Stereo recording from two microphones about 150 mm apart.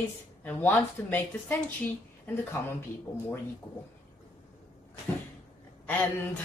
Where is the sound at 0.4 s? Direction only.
10° left (ahead or behind).